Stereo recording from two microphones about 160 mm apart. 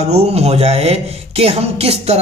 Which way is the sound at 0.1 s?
40° right (ahead or behind).